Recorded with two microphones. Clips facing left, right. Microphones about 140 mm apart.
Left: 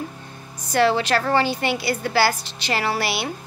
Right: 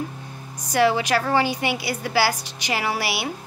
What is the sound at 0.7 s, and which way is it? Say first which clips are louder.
A woman's voice: left 1 dB; 10° right (ahead or behind).